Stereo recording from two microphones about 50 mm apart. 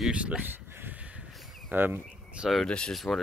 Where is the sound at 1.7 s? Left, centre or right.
Right.